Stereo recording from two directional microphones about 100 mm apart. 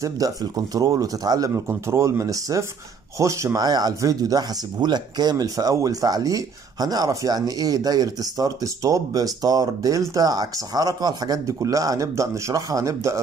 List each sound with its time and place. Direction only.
0.0 s speech: 35° right (ahead or behind)